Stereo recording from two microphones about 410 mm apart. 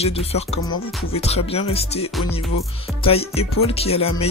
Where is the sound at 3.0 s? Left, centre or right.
Centre.